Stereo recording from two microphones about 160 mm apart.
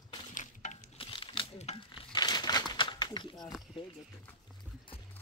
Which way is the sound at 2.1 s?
25° left (ahead or behind).